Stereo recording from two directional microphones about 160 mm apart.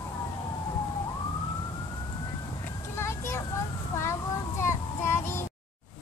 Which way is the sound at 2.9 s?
15° left (ahead or behind).